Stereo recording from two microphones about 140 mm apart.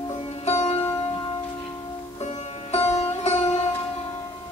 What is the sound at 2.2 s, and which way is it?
Music, 50° left (ahead or behind).